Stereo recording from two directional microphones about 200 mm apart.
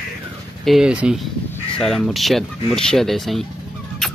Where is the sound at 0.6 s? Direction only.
5° right (ahead or behind).